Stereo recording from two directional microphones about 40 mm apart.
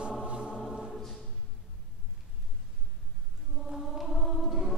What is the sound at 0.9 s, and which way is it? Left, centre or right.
Choir, centre.